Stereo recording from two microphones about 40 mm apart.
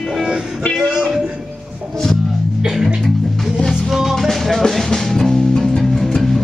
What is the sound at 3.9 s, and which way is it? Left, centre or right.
Music, centre.